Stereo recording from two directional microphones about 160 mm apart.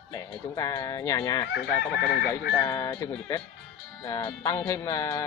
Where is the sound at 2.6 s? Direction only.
20° left (ahead or behind).